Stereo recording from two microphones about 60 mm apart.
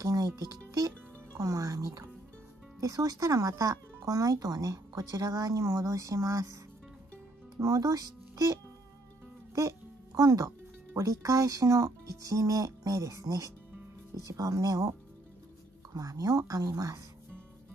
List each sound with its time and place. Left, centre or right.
0.0 s speech: right
7.5 s speech: right
9.6 s music: right
11.0 s a woman's voice: right
16.3 s speech: right